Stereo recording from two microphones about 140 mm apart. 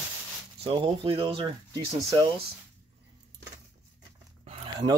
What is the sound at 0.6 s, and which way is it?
Speech, 40° right (ahead or behind).